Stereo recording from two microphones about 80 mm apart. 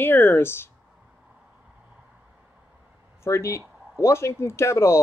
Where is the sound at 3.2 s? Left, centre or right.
Left.